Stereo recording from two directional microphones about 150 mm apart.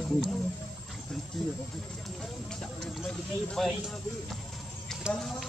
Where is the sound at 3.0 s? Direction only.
5° left (ahead or behind).